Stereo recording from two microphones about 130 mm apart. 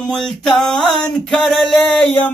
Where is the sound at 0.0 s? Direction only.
5° left (ahead or behind).